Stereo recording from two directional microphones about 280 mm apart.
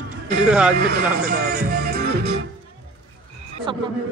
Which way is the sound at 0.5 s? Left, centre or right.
Centre.